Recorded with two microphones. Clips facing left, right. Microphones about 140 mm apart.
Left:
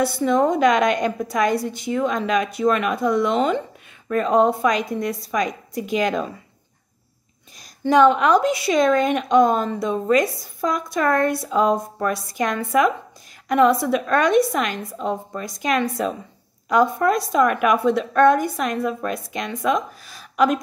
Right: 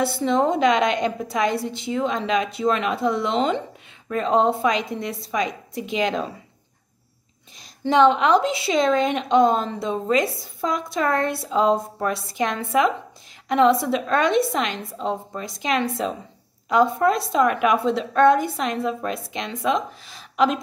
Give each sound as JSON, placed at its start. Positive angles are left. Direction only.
{"t": 0.0, "sound": "a woman's voice", "side_deg": -25}
{"t": 7.8, "sound": "a woman's voice", "side_deg": -25}